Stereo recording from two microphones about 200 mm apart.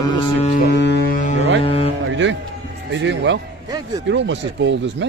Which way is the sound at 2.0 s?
65° right (ahead or behind).